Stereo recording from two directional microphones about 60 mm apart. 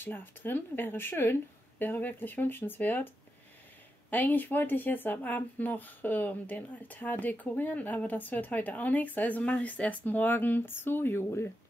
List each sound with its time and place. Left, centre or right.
0.0 s speech: left
4.1 s speech: left